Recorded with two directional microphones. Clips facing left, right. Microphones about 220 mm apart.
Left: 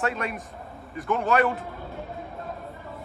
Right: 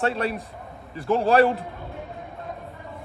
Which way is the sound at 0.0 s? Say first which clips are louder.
Right 4 dB; 30° right (ahead or behind).